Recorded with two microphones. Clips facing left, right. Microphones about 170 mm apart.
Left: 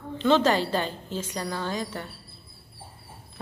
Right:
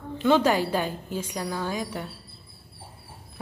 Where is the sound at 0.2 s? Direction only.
10° right (ahead or behind).